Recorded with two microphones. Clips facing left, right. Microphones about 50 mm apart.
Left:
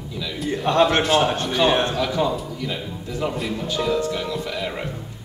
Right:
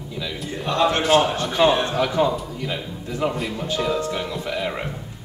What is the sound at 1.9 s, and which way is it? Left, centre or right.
Speech, right.